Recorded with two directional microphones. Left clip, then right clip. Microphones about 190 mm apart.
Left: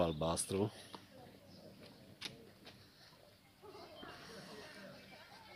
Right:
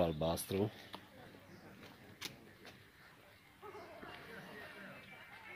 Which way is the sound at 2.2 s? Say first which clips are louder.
Even; 55° right (ahead or behind).